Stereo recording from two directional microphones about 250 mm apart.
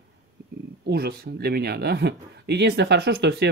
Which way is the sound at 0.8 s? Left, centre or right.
Right.